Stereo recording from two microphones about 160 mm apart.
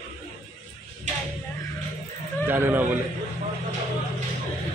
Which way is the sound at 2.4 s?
15° right (ahead or behind).